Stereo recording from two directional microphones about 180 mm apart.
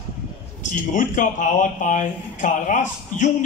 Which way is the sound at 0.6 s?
45° left (ahead or behind).